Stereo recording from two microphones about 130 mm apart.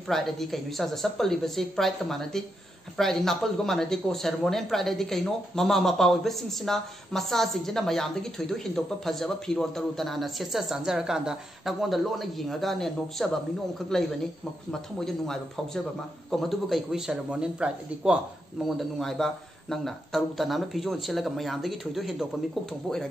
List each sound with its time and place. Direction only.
0.1 s speech: centre (ahead or behind)
14.7 s speech: 5° left (ahead or behind)
18.8 s speech: centre (ahead or behind)